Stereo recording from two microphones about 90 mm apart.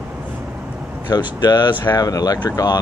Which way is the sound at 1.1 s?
45° left (ahead or behind).